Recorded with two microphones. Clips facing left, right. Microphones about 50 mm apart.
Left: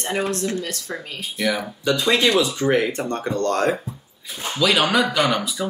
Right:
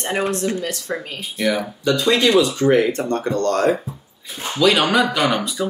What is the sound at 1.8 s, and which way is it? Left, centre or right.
Speech, centre.